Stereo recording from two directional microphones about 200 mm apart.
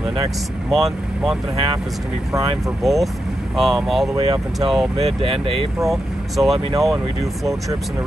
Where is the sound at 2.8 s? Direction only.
Centre (ahead or behind).